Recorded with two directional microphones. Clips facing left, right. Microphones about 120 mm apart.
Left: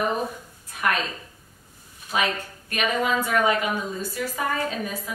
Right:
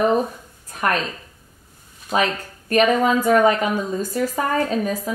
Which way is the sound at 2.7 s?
40° right (ahead or behind).